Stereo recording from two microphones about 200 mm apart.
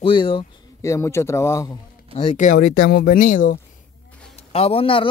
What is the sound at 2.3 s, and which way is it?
A man's voice, 45° left (ahead or behind).